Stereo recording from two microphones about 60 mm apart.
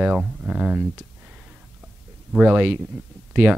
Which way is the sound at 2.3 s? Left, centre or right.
Right.